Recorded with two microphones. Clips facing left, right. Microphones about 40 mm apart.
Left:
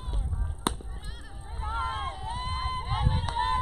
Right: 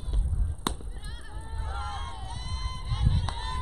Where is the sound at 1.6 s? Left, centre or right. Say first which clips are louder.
Left 6 dB; left.